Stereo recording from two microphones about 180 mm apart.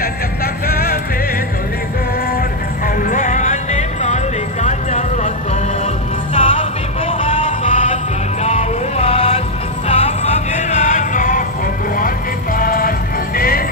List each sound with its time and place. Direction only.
0.7 s music: 55° left (ahead or behind)
3.0 s music: 45° left (ahead or behind)
6.3 s music: 40° left (ahead or behind)
12.5 s music: 50° left (ahead or behind)